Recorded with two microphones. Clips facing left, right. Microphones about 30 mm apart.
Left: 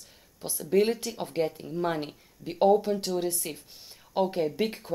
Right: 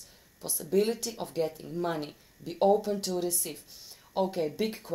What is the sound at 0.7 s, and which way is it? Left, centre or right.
Speech, left.